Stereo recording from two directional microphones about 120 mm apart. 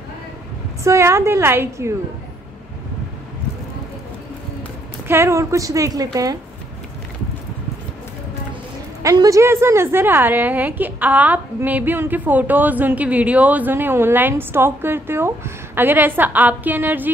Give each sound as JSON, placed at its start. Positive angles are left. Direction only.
{"t": 0.8, "sound": "a woman's voice", "side_deg": -25}
{"t": 5.0, "sound": "a woman's voice", "side_deg": -20}
{"t": 9.0, "sound": "a woman's voice", "side_deg": -30}